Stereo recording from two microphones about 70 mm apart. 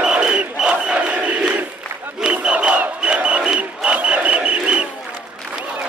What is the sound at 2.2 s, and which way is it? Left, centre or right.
Battle cry, centre.